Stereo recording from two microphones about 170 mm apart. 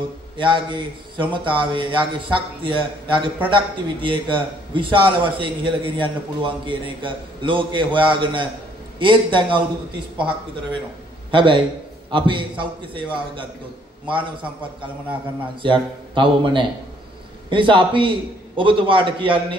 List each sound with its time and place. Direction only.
0.4 s a man's voice: 30° right (ahead or behind)
11.3 s a man's voice: 30° right (ahead or behind)
15.6 s a man's voice: 30° right (ahead or behind)